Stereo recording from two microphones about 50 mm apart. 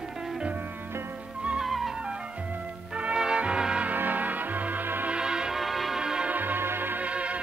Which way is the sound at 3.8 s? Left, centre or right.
Right.